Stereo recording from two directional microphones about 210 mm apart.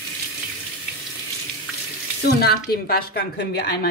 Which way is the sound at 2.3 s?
50° left (ahead or behind).